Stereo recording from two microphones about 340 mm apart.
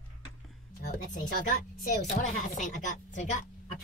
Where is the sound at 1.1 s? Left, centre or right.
Left.